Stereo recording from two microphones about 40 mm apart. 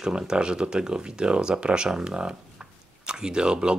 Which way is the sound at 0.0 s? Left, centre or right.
Centre.